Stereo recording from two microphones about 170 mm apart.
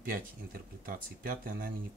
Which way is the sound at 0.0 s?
55° right (ahead or behind).